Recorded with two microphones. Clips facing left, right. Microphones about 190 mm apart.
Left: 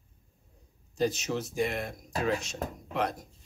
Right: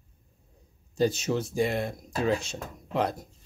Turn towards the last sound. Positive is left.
turn(degrees=-30)  # may be behind; listen again after turning